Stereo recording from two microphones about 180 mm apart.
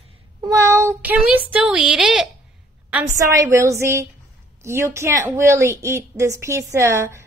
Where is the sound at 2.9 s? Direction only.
15° right (ahead or behind).